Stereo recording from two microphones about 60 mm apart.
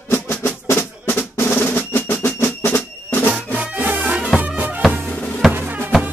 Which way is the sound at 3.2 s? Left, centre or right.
Right.